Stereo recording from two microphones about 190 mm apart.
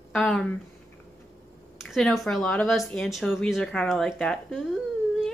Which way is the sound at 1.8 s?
Centre (ahead or behind).